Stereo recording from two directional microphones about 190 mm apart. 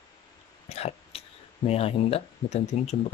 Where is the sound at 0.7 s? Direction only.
35° left (ahead or behind).